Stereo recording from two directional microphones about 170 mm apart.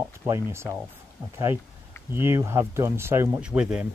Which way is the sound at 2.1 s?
15° right (ahead or behind).